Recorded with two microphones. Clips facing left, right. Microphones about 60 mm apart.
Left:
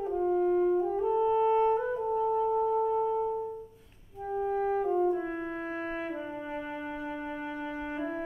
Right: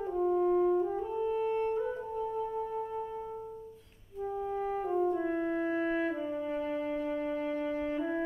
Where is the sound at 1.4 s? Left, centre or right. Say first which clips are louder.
Left 6 dB; left.